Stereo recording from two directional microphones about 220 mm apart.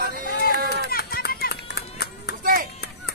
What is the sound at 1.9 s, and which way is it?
Music, 45° left (ahead or behind).